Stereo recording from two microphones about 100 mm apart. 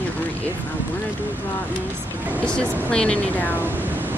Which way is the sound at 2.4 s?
10° left (ahead or behind).